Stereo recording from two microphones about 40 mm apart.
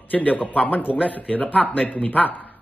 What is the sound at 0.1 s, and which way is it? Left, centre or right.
A man's voice, left.